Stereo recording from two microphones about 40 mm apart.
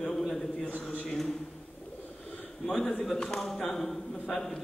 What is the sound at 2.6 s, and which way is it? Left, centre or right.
A man's voice, left.